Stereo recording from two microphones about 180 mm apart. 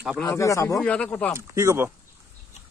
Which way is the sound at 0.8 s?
5° left (ahead or behind).